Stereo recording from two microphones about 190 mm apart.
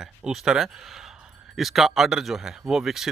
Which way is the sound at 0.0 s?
Centre (ahead or behind).